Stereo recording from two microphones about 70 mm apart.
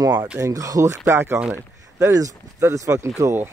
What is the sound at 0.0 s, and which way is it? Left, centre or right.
Speech, right.